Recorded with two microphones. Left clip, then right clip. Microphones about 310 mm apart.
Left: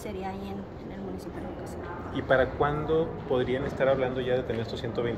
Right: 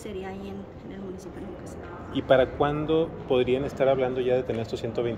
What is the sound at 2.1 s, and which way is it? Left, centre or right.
Speech, right.